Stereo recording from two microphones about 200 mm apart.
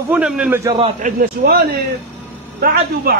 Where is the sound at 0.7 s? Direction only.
25° right (ahead or behind).